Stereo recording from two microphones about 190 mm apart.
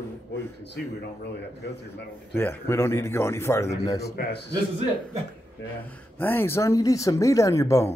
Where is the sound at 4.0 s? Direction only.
55° left (ahead or behind).